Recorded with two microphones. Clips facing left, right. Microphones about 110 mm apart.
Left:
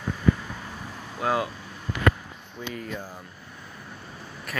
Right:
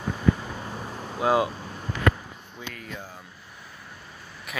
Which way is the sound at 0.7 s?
35° right (ahead or behind).